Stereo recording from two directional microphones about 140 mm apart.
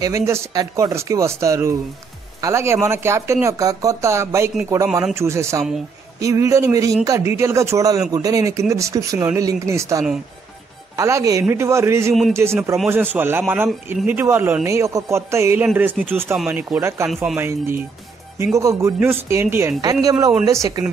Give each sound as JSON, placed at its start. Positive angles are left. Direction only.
{"t": 0.0, "sound": "speech", "side_deg": -20}
{"t": 12.1, "sound": "a man's voice", "side_deg": 0}
{"t": 12.9, "sound": "a man's voice", "side_deg": -15}